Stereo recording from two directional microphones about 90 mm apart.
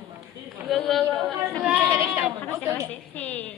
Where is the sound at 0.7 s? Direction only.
Centre (ahead or behind).